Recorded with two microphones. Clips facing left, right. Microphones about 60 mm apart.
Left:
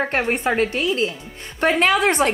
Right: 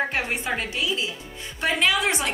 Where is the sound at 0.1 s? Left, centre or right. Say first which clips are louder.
Left 6 dB; left.